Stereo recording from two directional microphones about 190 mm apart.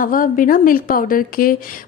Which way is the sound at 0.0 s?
45° left (ahead or behind).